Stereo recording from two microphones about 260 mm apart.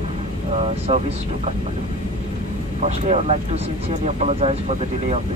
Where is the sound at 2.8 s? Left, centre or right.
Right.